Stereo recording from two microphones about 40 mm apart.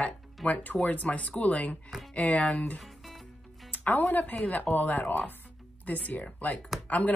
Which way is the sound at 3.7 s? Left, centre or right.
Left.